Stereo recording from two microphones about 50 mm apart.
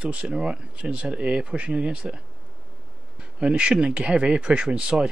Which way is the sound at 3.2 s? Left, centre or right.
Right.